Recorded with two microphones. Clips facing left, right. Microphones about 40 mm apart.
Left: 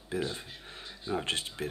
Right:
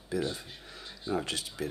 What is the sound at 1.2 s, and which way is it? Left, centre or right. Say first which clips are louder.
Speech: left 1 dB; left.